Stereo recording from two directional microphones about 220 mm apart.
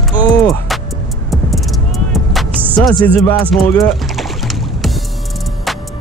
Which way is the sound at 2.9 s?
5° left (ahead or behind).